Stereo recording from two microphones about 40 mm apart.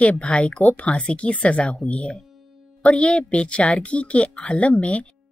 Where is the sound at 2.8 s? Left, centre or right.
Left.